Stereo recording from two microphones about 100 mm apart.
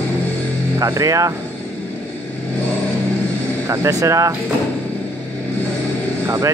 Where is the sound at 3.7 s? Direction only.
30° right (ahead or behind).